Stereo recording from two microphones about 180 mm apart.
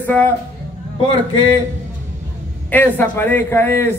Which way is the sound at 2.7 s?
10° left (ahead or behind).